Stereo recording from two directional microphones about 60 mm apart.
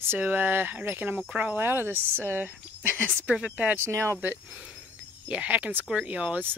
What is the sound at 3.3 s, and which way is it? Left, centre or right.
Speech, centre.